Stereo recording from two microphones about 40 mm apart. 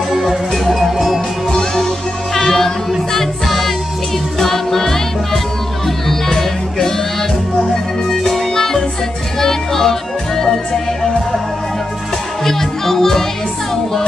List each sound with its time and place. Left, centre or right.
0.1 s music: centre
1.5 s music: centre
12.4 s music: centre